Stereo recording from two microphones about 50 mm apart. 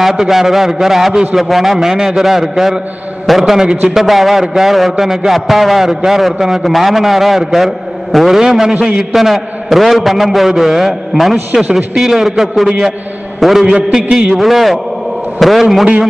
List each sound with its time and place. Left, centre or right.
0.0 s a man's voice: centre
8.7 s a man's voice: centre
9.1 s a man's voice: centre